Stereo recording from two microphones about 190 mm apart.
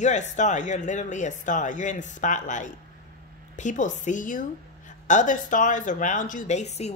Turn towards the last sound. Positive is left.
turn(degrees=35)  # may be behind; listen again after turning